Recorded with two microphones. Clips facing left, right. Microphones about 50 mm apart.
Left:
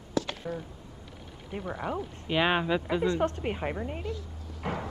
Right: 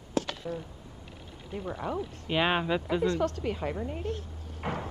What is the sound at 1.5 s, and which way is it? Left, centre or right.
Speech, left.